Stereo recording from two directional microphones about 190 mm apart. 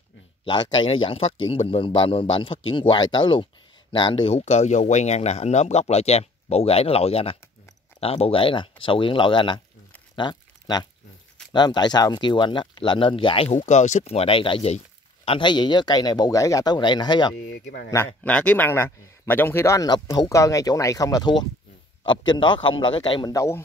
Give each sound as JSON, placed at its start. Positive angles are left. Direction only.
{"t": 0.5, "sound": "speech", "side_deg": 25}
{"t": 10.1, "sound": "a sound", "side_deg": 25}
{"t": 11.5, "sound": "speech", "side_deg": 20}
{"t": 17.6, "sound": "speech", "side_deg": 60}
{"t": 17.9, "sound": "speech", "side_deg": 10}